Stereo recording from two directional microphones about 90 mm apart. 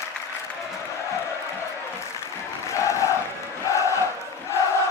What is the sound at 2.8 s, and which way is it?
Crowd, 35° left (ahead or behind).